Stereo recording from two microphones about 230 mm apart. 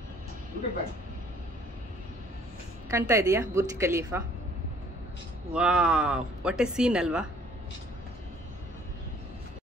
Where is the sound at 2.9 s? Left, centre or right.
Centre.